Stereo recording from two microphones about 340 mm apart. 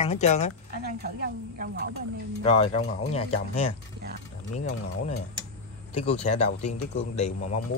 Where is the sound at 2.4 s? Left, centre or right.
Centre.